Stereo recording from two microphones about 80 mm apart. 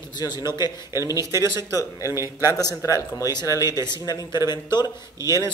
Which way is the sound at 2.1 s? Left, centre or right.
Right.